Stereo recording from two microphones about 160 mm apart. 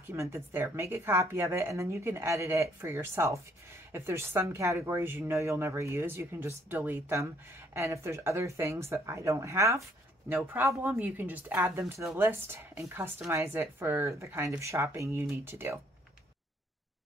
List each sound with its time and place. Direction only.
0.0 s a woman's voice: 15° right (ahead or behind)
11.8 s speech: centre (ahead or behind)
12.2 s a woman's voice: 15° right (ahead or behind)